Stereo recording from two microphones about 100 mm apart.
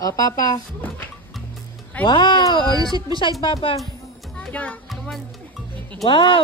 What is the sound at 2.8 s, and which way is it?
Speech, 40° right (ahead or behind).